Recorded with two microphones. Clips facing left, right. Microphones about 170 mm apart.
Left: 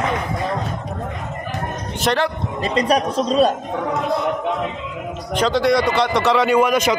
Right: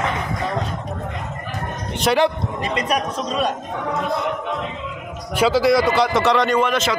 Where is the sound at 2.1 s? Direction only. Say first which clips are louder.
Right 1 dB; centre (ahead or behind).